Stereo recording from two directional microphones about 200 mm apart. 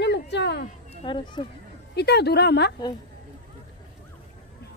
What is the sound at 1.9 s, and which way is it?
Speech, 55° left (ahead or behind).